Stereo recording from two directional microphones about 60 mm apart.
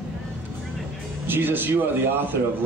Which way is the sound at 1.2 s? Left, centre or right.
Right.